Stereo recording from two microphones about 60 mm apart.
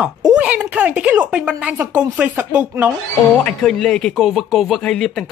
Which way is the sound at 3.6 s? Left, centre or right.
Centre.